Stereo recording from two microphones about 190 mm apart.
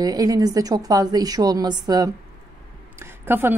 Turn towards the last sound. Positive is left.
turn(degrees=-10)  # may be behind; listen again after turning